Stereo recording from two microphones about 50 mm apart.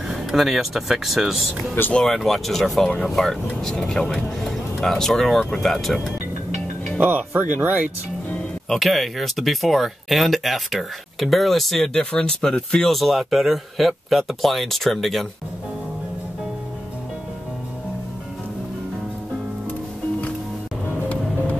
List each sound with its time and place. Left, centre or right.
0.1 s speech: centre
1.8 s speech: left
2.2 s speech: centre
7.0 s speech: right
8.6 s speech: centre
11.9 s speech: left
12.8 s speech: centre